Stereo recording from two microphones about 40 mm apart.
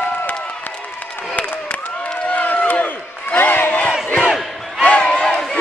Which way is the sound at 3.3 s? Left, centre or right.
Left.